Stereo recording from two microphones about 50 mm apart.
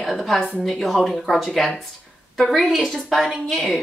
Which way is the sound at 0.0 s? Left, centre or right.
Centre.